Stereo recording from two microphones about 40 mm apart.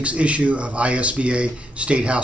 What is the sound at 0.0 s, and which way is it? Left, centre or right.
Speech, right.